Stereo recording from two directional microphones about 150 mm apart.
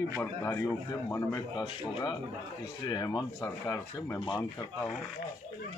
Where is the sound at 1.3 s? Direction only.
30° left (ahead or behind).